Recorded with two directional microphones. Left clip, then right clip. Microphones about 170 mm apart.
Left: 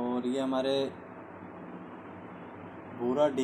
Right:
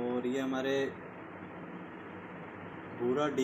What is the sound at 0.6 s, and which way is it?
Speech, 25° left (ahead or behind).